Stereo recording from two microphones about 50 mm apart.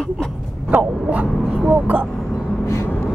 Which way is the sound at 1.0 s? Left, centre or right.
Right.